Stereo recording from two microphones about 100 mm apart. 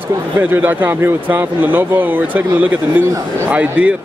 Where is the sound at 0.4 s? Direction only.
20° right (ahead or behind).